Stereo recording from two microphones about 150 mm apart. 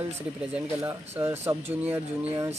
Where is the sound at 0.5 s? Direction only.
15° right (ahead or behind).